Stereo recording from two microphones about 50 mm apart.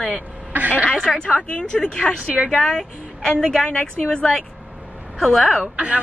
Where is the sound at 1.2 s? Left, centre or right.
Centre.